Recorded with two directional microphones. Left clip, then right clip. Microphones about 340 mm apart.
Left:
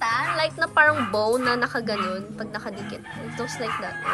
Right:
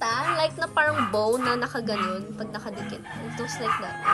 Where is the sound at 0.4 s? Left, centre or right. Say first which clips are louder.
Left 4 dB; centre.